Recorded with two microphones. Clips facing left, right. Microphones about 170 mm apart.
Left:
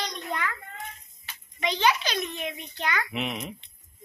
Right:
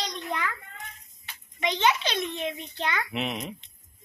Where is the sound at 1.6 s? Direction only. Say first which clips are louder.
Even; 20° right (ahead or behind).